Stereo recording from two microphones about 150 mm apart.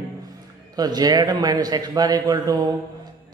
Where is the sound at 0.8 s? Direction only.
25° right (ahead or behind).